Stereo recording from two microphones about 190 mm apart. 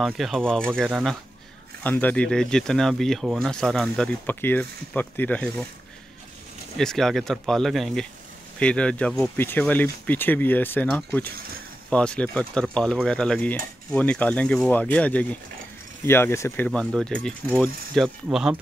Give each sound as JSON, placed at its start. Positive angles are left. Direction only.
{"t": 0.0, "sound": "speech", "side_deg": 0}
{"t": 6.8, "sound": "speech", "side_deg": 0}